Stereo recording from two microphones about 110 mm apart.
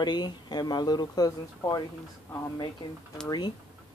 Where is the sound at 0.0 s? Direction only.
40° left (ahead or behind).